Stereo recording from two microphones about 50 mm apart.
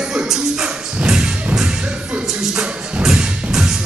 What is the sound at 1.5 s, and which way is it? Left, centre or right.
Music, centre.